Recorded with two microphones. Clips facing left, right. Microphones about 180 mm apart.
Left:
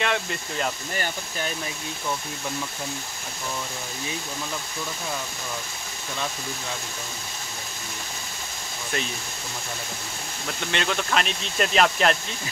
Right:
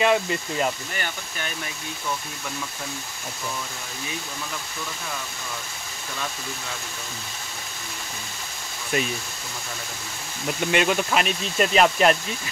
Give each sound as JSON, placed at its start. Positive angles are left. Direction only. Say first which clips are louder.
{"t": 0.0, "sound": "speech", "louder": "right 6 dB", "side_deg": -5}
{"t": 0.9, "sound": "speech", "louder": "left 3 dB", "side_deg": 35}
{"t": 10.7, "sound": "speech", "louder": "right 4 dB", "side_deg": -10}